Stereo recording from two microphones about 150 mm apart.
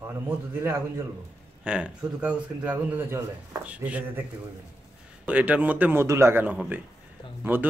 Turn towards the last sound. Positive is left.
turn(degrees=-15)  # may be behind; listen again after turning